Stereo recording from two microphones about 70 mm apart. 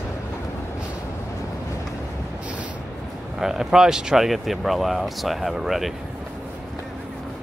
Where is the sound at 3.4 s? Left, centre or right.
Centre.